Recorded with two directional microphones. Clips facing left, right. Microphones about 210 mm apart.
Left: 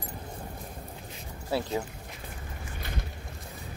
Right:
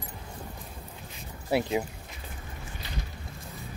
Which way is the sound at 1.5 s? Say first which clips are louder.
Right 3 dB; 15° right (ahead or behind).